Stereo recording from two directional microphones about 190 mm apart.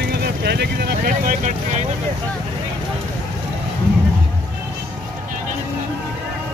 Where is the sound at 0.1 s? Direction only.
60° right (ahead or behind); by 1.9 s 40° right (ahead or behind).